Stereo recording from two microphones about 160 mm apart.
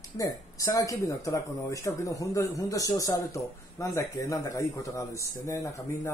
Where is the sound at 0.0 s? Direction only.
20° left (ahead or behind).